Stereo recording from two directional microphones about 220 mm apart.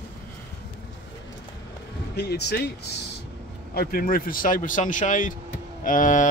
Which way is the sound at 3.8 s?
40° left (ahead or behind).